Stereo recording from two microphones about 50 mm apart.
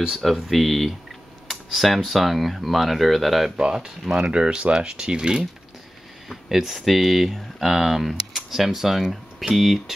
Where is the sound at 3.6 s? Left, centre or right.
Centre.